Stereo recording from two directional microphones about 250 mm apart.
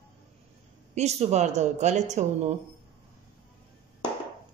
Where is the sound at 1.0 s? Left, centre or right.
Right.